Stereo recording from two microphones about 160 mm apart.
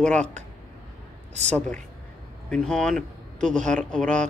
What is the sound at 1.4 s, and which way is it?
Speech, 5° left (ahead or behind).